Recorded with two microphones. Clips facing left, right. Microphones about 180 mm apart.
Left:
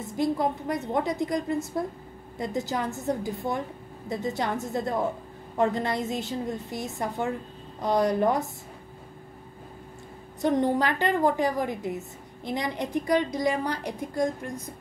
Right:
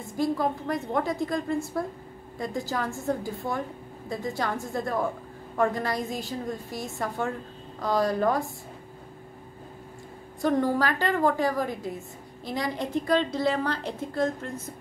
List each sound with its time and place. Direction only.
0.0 s a woman's voice: 20° left (ahead or behind)
4.1 s a woman's voice: 20° left (ahead or behind)
10.4 s a woman's voice: 20° left (ahead or behind)